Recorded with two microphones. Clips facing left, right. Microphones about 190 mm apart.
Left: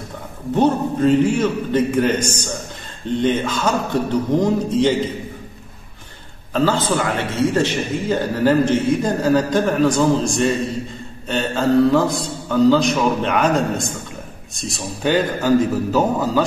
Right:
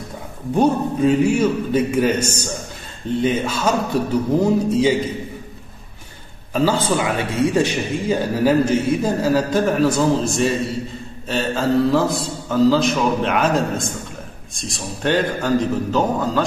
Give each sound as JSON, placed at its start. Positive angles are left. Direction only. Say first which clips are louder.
{"t": 0.6, "sound": "a man's voice", "louder": "even", "side_deg": -10}
{"t": 6.5, "sound": "a man's voice", "louder": "even", "side_deg": -10}